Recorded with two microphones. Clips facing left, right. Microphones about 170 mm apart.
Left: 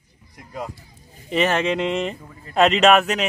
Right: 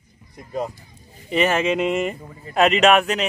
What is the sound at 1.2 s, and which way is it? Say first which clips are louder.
Speech: right 1 dB; 5° right (ahead or behind).